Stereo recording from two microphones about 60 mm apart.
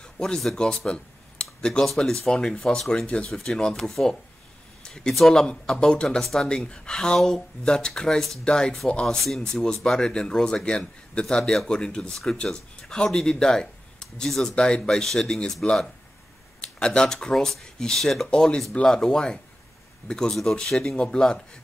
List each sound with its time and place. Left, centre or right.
0.0 s speech: centre
4.8 s a sound: centre
5.1 s speech: centre